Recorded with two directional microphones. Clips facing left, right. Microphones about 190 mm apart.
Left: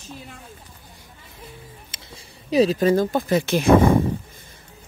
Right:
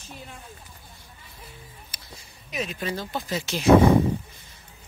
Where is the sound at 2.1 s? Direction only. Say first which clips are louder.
Left 14 dB; 35° left (ahead or behind).